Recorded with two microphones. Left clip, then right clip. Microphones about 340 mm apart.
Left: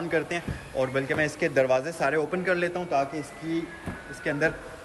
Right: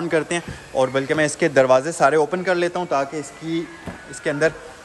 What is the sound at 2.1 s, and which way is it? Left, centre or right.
Speech, centre.